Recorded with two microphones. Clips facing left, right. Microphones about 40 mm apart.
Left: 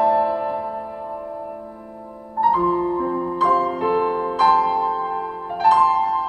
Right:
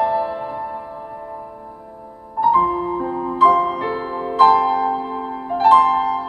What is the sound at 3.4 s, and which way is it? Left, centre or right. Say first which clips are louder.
Music: right 5 dB; right.